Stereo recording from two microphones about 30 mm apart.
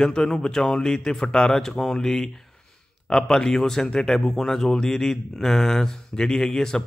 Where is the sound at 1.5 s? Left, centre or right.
Centre.